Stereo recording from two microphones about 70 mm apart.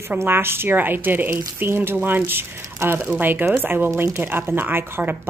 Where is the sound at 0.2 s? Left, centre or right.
Right.